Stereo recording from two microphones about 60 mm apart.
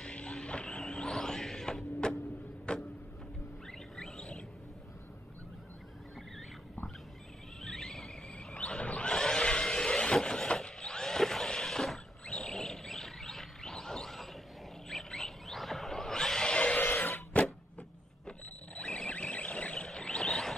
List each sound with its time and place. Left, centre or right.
0.0 s music: centre
2.7 s vehicle: centre
3.9 s rodents: centre
7.6 s a sound: centre
16.8 s printer: left
18.8 s a sound: centre